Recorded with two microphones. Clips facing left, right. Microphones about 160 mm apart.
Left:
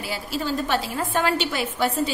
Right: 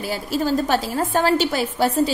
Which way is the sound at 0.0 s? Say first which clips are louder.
Right 5 dB; 40° right (ahead or behind).